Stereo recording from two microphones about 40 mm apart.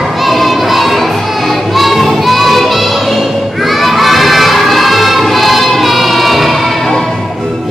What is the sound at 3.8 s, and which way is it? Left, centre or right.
Music, centre.